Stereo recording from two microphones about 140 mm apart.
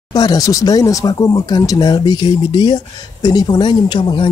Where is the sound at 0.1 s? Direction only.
30° left (ahead or behind).